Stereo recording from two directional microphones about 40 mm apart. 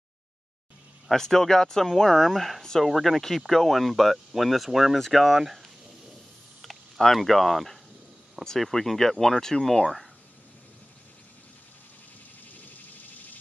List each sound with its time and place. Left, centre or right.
1.1 s speech: centre
7.2 s speech: centre
12.5 s cricket: left